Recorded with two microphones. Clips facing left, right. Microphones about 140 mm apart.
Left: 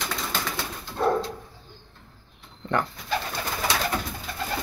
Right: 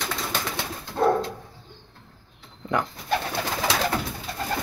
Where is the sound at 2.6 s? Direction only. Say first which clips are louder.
Even; 10° right (ahead or behind).